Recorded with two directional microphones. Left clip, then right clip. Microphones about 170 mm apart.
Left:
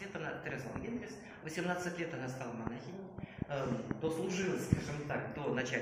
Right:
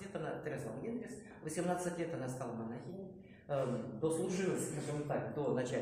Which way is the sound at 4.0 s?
30° right (ahead or behind).